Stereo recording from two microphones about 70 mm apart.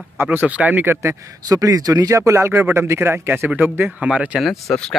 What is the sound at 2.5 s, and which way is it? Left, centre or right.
Speech, right.